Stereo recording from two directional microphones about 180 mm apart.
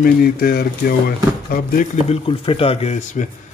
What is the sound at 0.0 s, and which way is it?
Speech, 55° left (ahead or behind).